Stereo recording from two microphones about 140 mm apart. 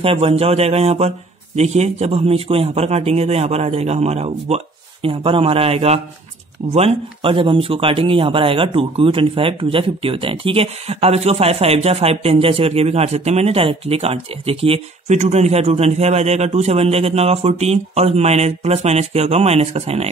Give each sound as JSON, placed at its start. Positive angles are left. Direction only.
{"t": 0.0, "sound": "speech", "side_deg": -45}